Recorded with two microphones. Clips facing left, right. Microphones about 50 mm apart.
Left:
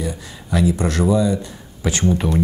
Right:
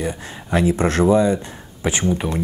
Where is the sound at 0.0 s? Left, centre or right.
Right.